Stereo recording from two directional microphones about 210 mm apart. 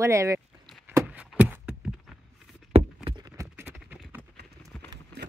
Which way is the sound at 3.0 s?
20° right (ahead or behind).